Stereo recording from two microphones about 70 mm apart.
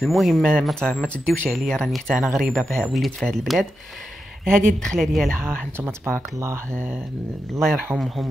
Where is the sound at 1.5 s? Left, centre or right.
Centre.